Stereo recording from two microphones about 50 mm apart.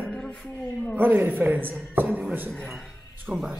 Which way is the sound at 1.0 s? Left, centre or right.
Right.